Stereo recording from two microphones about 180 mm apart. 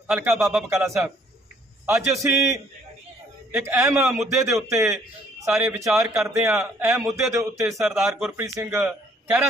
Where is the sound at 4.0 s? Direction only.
Centre (ahead or behind).